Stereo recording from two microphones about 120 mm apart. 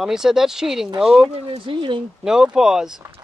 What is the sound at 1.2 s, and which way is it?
Speech, 45° right (ahead or behind).